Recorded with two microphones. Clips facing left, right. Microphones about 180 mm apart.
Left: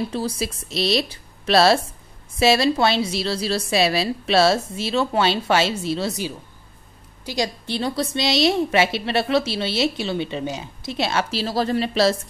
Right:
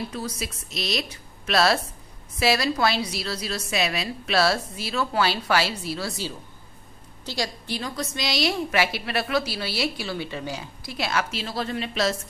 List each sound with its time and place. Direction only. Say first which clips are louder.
0.1 s a woman's voice: left 6 dB; 30° left (ahead or behind)